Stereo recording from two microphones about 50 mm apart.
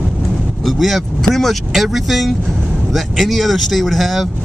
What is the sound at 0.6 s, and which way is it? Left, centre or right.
Speech, centre.